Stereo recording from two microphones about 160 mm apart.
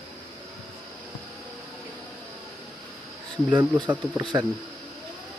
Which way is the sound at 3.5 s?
20° right (ahead or behind).